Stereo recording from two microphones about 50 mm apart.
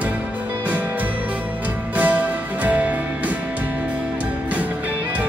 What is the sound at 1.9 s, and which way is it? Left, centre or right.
Music, right.